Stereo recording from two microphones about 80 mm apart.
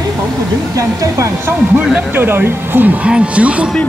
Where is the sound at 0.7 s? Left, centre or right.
Right.